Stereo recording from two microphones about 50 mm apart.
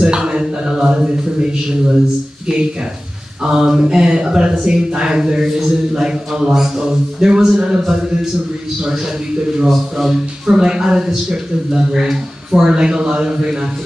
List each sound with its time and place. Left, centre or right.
0.0 s speech: centre
9.7 s speech: centre
10.4 s speech: centre